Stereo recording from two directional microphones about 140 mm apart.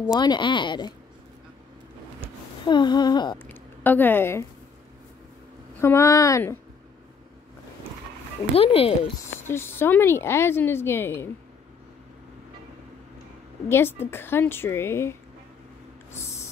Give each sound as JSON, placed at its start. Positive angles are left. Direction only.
{"t": 0.1, "sound": "speech", "side_deg": 30}
{"t": 2.6, "sound": "speech", "side_deg": 35}
{"t": 3.3, "sound": "a woman's voice", "side_deg": 15}
{"t": 5.8, "sound": "speech", "side_deg": 20}
{"t": 8.5, "sound": "speech", "side_deg": 40}
{"t": 9.5, "sound": "a woman's voice", "side_deg": 15}
{"t": 13.7, "sound": "a woman's voice", "side_deg": 15}